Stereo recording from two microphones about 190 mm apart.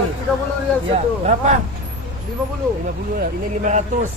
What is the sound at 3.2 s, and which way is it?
Speech, 40° right (ahead or behind).